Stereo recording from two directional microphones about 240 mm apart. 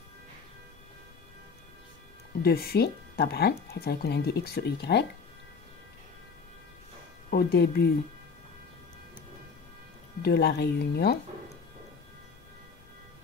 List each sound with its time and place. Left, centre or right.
2.4 s speech: left
7.2 s speech: left
10.2 s speech: left